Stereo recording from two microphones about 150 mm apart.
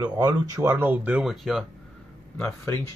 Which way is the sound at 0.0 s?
25° right (ahead or behind).